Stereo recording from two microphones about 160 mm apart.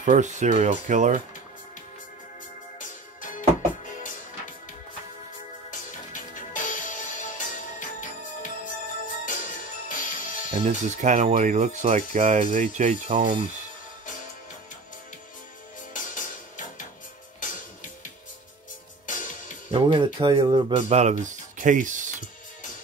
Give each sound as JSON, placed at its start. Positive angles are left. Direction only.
{"t": 0.0, "sound": "speech", "side_deg": -50}
{"t": 3.2, "sound": "music", "side_deg": 55}
{"t": 5.7, "sound": "music", "side_deg": 55}
{"t": 10.7, "sound": "speech", "side_deg": -50}
{"t": 15.9, "sound": "music", "side_deg": 55}
{"t": 19.7, "sound": "speech", "side_deg": -30}
{"t": 20.9, "sound": "speech", "side_deg": -45}